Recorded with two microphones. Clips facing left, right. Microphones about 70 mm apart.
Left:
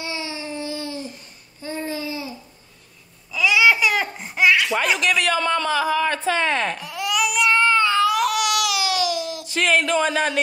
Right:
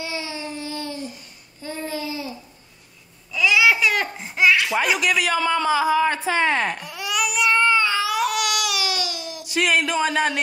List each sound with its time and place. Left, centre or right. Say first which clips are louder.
0.1 s a sound: even; left
1.6 s babbling: left 1 dB; left
3.3 s babbling: left 1 dB; centre